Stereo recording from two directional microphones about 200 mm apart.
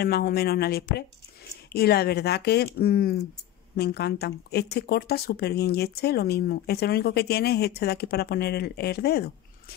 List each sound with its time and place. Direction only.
0.0 s speech: 50° left (ahead or behind)